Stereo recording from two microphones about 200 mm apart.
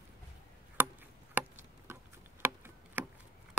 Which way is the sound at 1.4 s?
10° right (ahead or behind).